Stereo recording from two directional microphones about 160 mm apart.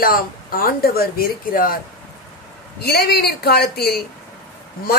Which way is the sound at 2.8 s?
75° left (ahead or behind).